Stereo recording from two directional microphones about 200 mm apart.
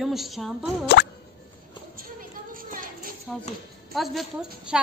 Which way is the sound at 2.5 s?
45° right (ahead or behind).